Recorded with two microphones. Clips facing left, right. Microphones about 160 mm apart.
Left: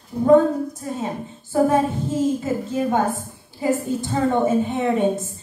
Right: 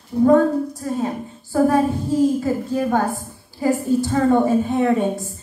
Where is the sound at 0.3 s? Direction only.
20° left (ahead or behind).